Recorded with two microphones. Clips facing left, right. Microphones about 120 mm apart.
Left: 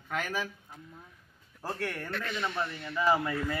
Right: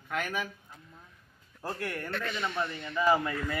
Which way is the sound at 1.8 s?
Centre (ahead or behind).